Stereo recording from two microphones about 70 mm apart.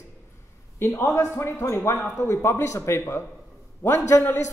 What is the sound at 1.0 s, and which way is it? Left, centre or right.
A man's voice, left.